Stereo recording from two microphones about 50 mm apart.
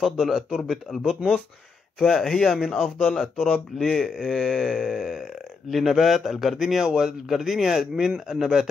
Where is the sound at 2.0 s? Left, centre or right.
Centre.